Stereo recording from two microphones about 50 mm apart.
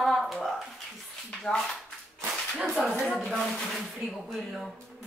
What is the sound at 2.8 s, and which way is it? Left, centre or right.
Speech, centre.